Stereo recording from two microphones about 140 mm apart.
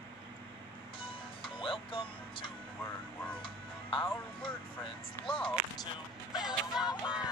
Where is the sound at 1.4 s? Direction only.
40° left (ahead or behind).